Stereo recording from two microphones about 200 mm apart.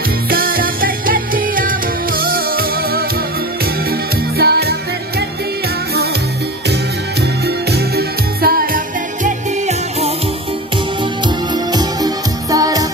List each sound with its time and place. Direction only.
0.3 s music: 45° right (ahead or behind)
4.4 s music: 50° right (ahead or behind)
7.4 s music: 55° right (ahead or behind); by 10.1 s 35° right (ahead or behind)
11.2 s music: 20° right (ahead or behind)